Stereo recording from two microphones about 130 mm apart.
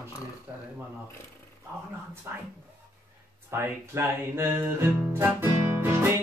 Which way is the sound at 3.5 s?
20° right (ahead or behind).